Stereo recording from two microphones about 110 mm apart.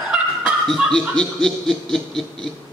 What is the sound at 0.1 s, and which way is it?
Snicker, centre (ahead or behind).